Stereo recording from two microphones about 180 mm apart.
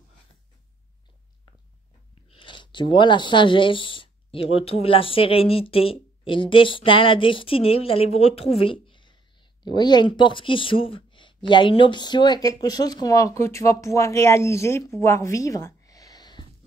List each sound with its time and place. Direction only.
2.3 s speech: 25° left (ahead or behind)